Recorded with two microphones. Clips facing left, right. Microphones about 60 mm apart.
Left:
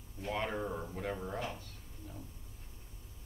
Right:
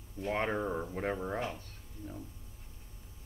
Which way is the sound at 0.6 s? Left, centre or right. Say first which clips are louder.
Right 4 dB; right.